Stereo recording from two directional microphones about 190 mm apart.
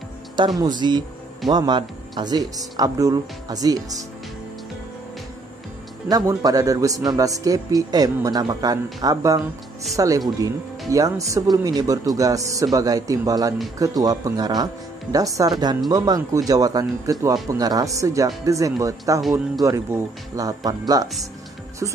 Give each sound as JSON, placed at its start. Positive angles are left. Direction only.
{"t": 0.4, "sound": "speech", "side_deg": -20}
{"t": 6.0, "sound": "speech", "side_deg": -20}